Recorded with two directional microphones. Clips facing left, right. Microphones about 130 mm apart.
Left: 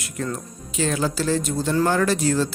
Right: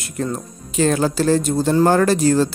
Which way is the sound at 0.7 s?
45° right (ahead or behind).